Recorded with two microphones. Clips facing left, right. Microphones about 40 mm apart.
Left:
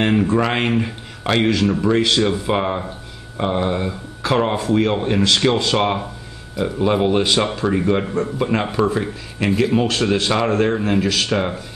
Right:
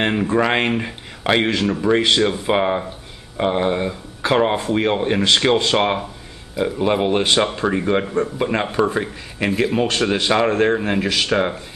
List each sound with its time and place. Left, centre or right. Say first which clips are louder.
0.0 s speech: left 1 dB; centre
9.8 s speech: even; centre
11.2 s speech: right 2 dB; centre